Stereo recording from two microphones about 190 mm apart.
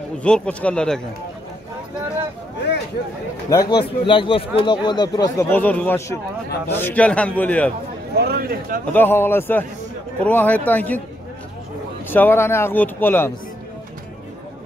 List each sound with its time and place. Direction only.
0.2 s speech: 5° left (ahead or behind)
3.4 s speech: 20° left (ahead or behind)
8.2 s speech: 55° right (ahead or behind)
8.9 s speech: 10° left (ahead or behind)
12.1 s speech: 10° left (ahead or behind)